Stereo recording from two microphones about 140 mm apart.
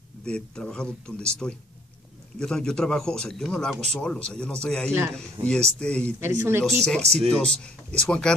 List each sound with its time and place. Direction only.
0.2 s a man's voice: 5° left (ahead or behind)
6.1 s speech: 20° right (ahead or behind)
6.8 s a man's voice: 5° left (ahead or behind)